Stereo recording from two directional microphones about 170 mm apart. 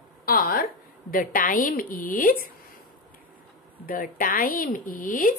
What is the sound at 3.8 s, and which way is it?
Speech, 55° left (ahead or behind).